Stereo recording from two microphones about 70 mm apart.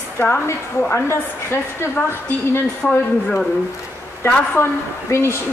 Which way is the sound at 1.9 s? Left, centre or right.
Left.